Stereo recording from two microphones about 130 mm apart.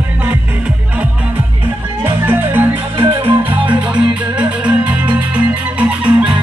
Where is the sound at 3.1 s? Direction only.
40° right (ahead or behind).